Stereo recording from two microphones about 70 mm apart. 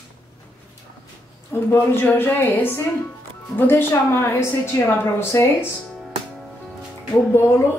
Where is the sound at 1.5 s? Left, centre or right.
Left.